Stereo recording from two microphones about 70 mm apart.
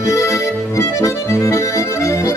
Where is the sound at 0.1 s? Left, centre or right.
Left.